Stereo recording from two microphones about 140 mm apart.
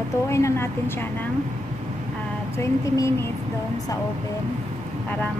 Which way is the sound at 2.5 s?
20° left (ahead or behind).